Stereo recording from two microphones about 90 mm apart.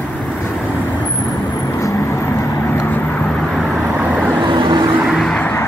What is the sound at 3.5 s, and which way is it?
Vehicle, 5° right (ahead or behind).